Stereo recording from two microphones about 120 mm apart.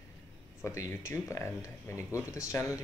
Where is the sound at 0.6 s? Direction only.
25° left (ahead or behind).